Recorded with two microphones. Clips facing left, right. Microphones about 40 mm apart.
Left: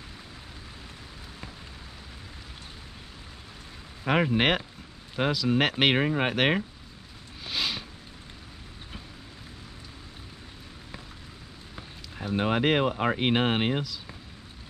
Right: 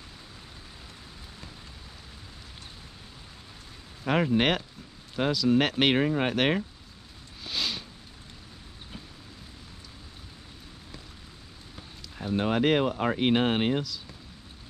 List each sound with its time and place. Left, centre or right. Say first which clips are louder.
4.0 s speech: left 1 dB; centre
7.4 s a sound: left 1 dB; centre
12.2 s speech: even; centre